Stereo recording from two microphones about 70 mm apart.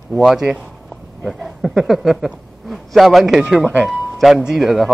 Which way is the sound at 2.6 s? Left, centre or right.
Centre.